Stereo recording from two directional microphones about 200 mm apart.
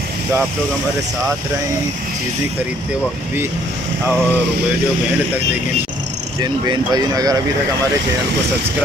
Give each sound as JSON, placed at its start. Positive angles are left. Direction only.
{"t": 6.4, "sound": "speech", "side_deg": -20}